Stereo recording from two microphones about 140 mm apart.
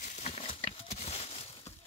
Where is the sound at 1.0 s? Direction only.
45° left (ahead or behind).